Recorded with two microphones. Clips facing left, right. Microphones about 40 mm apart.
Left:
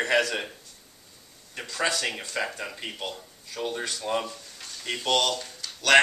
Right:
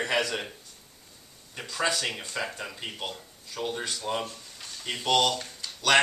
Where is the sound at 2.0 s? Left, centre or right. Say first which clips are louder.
Left 2 dB; centre.